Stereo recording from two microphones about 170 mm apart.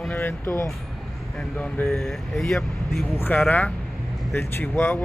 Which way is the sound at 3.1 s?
10° left (ahead or behind).